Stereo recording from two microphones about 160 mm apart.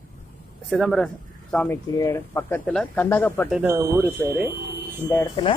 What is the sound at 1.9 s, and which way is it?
Speech, 15° left (ahead or behind).